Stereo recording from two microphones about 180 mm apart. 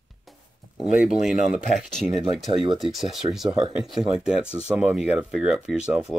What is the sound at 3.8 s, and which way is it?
Speech, 5° right (ahead or behind).